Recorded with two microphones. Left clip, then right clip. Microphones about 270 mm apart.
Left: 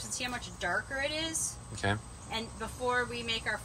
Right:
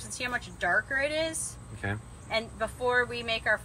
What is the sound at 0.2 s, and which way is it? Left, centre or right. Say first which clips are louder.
A woman's voice: right 6 dB; centre.